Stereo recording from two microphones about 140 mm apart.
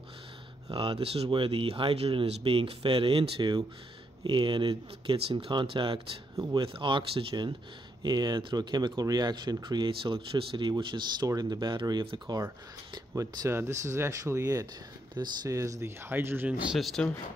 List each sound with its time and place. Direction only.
0.7 s speech: 40° right (ahead or behind); by 17.1 s centre (ahead or behind)